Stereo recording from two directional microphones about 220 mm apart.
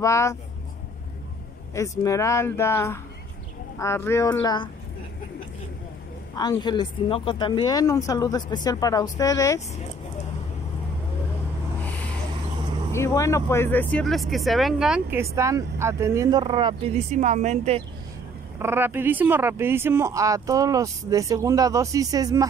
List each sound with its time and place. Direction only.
0.0 s speech: 15° left (ahead or behind)
1.7 s speech: 15° left (ahead or behind)
6.3 s speech: 20° left (ahead or behind)
12.9 s speech: 15° left (ahead or behind); by 17.8 s 30° right (ahead or behind)
18.6 s speech: 10° right (ahead or behind)